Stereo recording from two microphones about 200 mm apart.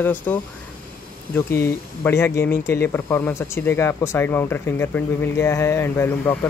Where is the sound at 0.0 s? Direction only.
10° left (ahead or behind).